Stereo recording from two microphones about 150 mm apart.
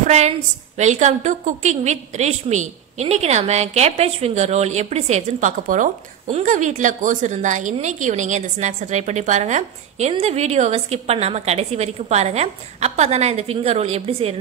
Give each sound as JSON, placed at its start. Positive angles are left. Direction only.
{"t": 0.0, "sound": "a woman's voice", "side_deg": -50}